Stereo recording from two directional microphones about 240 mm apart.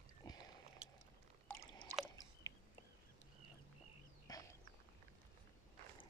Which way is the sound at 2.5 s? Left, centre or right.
Centre.